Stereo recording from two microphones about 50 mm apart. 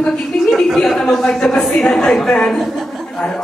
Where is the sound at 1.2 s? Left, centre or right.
Centre.